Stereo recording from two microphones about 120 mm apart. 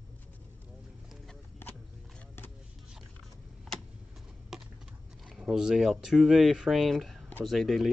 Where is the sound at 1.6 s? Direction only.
20° left (ahead or behind).